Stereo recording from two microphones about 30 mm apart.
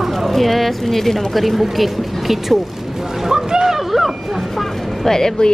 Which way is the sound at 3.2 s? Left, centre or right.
Right.